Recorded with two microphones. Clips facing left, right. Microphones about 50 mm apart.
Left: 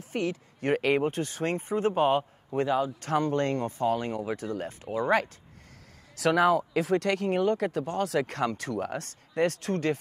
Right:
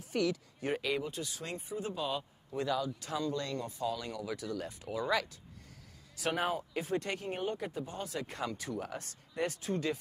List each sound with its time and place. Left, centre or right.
0.1 s speech: left
0.6 s speech: left
6.1 s speech: left